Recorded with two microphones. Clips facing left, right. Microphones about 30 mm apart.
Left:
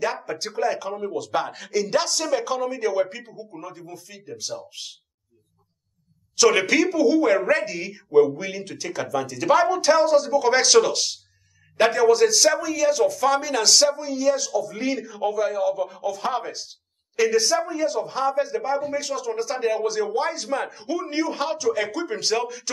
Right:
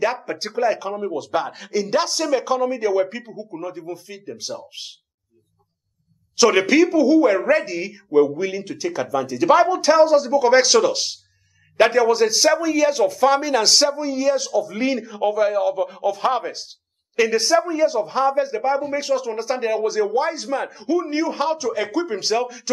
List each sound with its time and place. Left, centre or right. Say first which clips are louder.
0.0 s speech: right 4 dB; centre
6.3 s a man's voice: right 3 dB; centre